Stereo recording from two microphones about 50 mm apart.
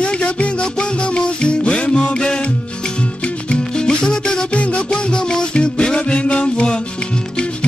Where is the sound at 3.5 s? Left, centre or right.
Centre.